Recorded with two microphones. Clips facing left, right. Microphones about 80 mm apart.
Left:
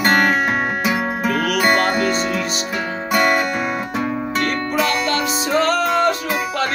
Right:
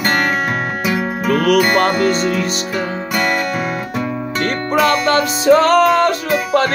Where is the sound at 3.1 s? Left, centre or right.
Centre.